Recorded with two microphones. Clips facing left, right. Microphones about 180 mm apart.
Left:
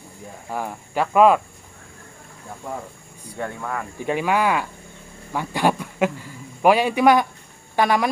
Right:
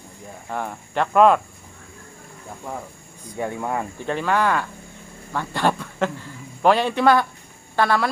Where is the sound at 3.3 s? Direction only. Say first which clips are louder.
Right 3 dB; 20° right (ahead or behind).